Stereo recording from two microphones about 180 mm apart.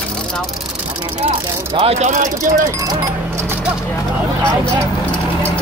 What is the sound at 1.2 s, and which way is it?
Speech, 35° right (ahead or behind).